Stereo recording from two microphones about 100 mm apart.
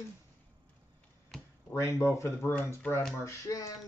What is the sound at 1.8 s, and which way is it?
Speech, 30° left (ahead or behind).